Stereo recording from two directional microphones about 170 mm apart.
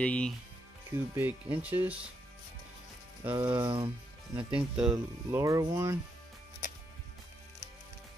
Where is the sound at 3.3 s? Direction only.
25° right (ahead or behind).